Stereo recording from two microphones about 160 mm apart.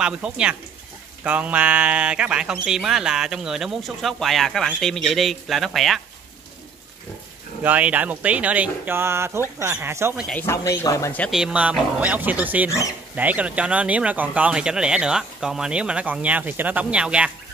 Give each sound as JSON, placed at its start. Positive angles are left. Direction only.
{"t": 0.0, "sound": "speech", "side_deg": -5}
{"t": 7.6, "sound": "speech", "side_deg": -10}
{"t": 10.3, "sound": "a man's voice", "side_deg": 15}
{"t": 11.2, "sound": "speech", "side_deg": -5}
{"t": 12.6, "sound": "speech", "side_deg": 20}
{"t": 13.1, "sound": "speech", "side_deg": -10}